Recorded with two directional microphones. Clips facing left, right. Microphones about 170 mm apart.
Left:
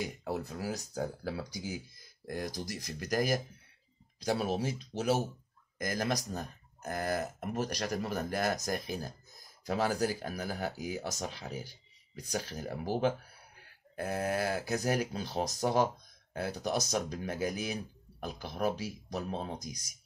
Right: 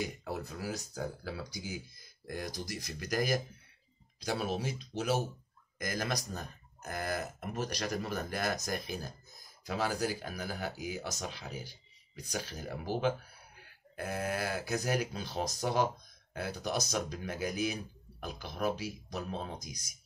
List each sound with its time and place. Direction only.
0.2 s speech: 35° left (ahead or behind)